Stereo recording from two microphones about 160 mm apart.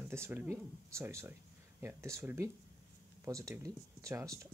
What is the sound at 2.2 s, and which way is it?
Speech, 15° right (ahead or behind).